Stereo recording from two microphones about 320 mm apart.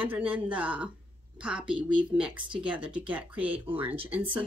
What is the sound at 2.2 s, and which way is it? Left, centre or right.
A woman's voice, centre.